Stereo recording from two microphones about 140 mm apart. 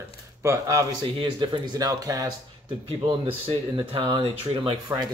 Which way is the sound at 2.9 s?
40° right (ahead or behind).